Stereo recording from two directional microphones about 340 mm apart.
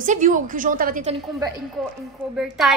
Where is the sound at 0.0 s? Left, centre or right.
Right.